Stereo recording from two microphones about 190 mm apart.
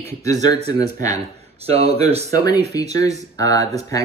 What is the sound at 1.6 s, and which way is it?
Speech, 30° right (ahead or behind).